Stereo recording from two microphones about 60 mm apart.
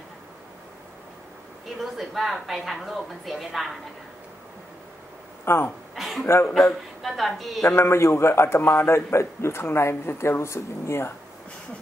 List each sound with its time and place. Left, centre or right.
1.8 s a woman's voice: centre
5.4 s speech: left
5.9 s a sound: centre
6.2 s a man's voice: left
7.0 s a woman's voice: centre
7.7 s a man's voice: left